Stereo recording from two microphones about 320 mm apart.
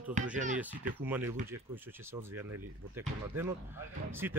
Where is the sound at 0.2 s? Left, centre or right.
Right.